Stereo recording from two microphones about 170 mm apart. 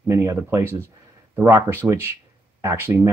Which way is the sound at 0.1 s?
15° right (ahead or behind).